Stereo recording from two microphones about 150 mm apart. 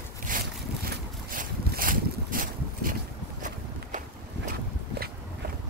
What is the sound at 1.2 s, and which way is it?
Boat, 70° right (ahead or behind).